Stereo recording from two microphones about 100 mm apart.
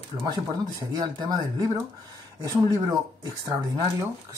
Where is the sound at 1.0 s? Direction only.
40° right (ahead or behind).